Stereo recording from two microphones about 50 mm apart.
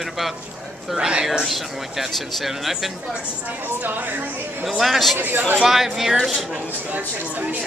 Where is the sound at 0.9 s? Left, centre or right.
Centre.